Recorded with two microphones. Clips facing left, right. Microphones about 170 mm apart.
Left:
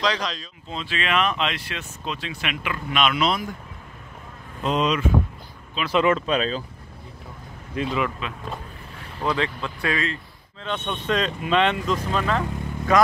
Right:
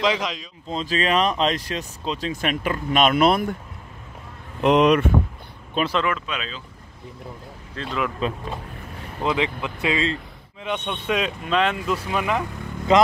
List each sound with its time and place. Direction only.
0.0 s speech: 20° right (ahead or behind)
0.7 s speech: 40° right (ahead or behind); by 3.5 s 55° right (ahead or behind)
4.6 s speech: 65° right (ahead or behind)
6.0 s speech: 35° left (ahead or behind)
7.8 s a man's voice: 15° left (ahead or behind)
8.2 s speech: 35° right (ahead or behind)
9.2 s speech: 20° right (ahead or behind)